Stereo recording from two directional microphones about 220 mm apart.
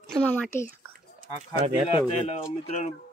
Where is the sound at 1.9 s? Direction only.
25° left (ahead or behind).